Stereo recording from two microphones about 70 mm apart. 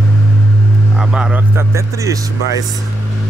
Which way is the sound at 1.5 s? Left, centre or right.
Right.